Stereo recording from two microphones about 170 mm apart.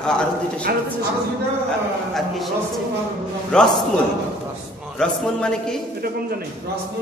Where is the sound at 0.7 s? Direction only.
65° right (ahead or behind).